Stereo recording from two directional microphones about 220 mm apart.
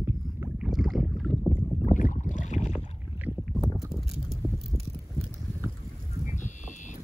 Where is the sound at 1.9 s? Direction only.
35° left (ahead or behind).